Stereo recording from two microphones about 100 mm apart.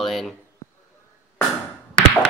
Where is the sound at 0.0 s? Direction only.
Centre (ahead or behind).